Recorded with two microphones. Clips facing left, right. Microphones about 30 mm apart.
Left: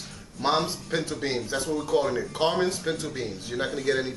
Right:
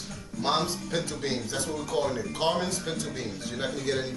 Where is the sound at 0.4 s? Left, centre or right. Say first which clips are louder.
Left 2 dB; centre.